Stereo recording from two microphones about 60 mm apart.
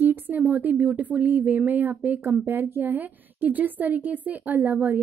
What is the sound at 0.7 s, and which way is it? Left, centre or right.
A woman's voice, right.